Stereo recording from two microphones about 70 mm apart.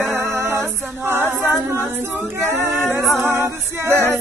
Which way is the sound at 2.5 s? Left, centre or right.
Right.